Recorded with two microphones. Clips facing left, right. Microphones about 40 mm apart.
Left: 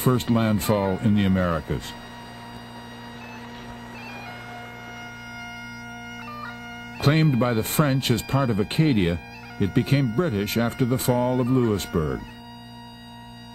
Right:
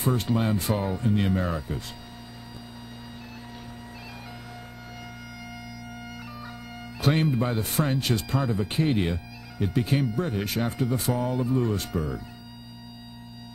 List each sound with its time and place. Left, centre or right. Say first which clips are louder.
0.0 s speech: left 4 dB; left
7.0 s speech: left 3 dB; left